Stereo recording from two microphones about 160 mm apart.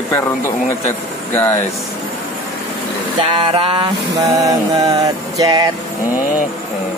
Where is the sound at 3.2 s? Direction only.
35° right (ahead or behind).